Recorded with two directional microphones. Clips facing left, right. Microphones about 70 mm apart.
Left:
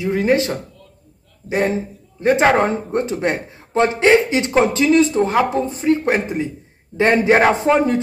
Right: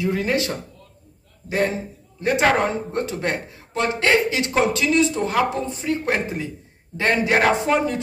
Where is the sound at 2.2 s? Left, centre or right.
Left.